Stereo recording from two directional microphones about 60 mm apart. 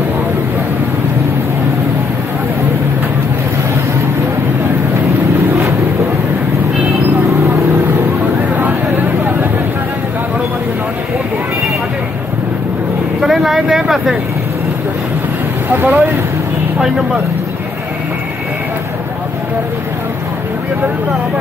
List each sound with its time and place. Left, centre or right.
13.2 s vehicle: centre
15.7 s vehicle: right